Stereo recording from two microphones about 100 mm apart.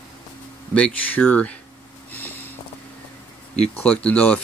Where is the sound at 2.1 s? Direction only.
20° left (ahead or behind).